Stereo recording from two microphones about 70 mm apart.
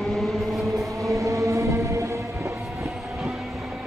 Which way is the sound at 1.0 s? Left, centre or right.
Right.